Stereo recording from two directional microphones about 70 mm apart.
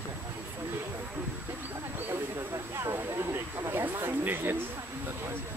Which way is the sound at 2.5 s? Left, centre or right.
Right.